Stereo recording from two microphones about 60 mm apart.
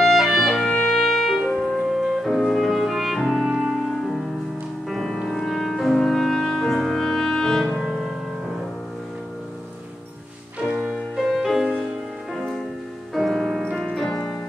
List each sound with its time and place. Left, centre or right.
0.0 s clarinet: centre
0.8 s music: centre
1.8 s music: centre
11.2 s music: centre
13.1 s music: centre
14.0 s keyboard: centre